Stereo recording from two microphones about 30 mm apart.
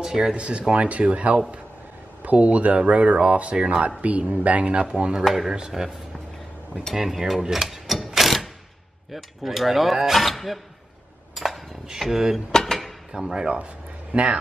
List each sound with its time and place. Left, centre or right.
0.1 s a man's voice: right
4.0 s speech: right
4.9 s a man's voice: right
5.2 s a sound: centre
7.0 s cutlery: centre
7.6 s mechanisms: centre
9.1 s cutlery: centre
11.3 s a sound: centre
12.4 s drawer open or close: centre
13.3 s speech: right
14.1 s a man's voice: right